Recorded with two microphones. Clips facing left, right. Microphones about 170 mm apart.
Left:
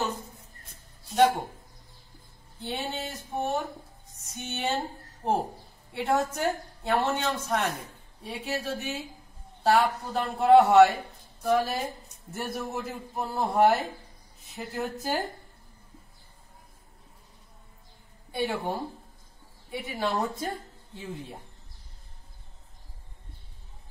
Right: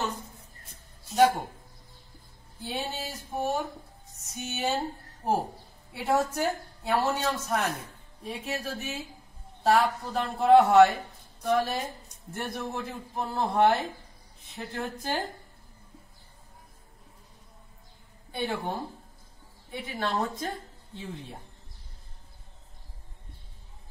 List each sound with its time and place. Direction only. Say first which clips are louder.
0.7 s a sound: even; centre (ahead or behind)
2.6 s a woman's voice: left 1 dB; 5° right (ahead or behind)
18.3 s a woman's voice: left 2 dB; 10° left (ahead or behind)